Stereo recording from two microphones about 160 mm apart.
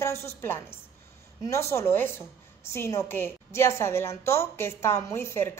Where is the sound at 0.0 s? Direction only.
15° left (ahead or behind).